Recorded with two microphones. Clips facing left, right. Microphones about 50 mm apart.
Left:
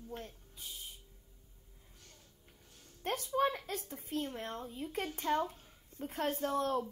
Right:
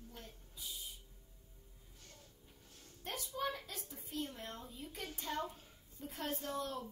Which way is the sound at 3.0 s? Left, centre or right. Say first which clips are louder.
Left 8 dB; left.